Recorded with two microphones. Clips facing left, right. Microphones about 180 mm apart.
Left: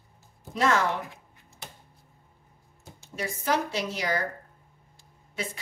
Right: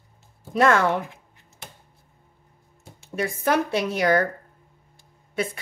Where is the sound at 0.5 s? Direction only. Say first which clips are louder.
Right 6 dB; 60° right (ahead or behind).